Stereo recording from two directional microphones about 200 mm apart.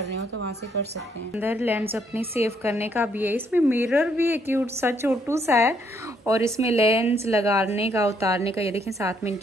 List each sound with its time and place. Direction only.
1.3 s a woman's voice: 10° right (ahead or behind)